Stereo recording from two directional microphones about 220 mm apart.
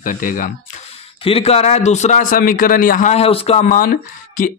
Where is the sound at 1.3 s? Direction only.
25° left (ahead or behind).